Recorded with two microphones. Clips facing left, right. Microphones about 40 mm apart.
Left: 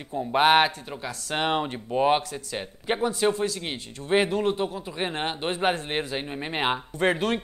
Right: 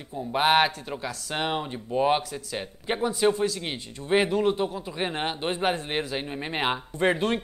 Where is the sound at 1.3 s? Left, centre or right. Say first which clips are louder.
Left 4 dB; left.